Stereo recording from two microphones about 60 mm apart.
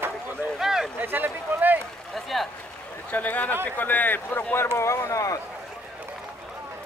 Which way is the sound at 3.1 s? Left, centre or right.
Left.